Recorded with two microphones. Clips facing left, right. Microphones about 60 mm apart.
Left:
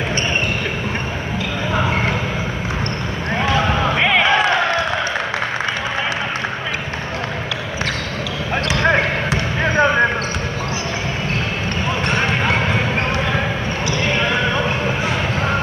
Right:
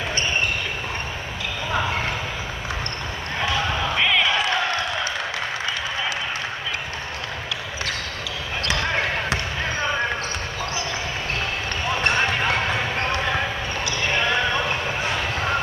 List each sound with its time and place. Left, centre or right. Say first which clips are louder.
1.7 s basketball bounce: left 4 dB; left
3.3 s basketball bounce: left 6 dB; left
8.7 s basketball bounce: left 8 dB; left
11.9 s basketball bounce: left 1 dB; left
14.9 s a sound: left 4 dB; left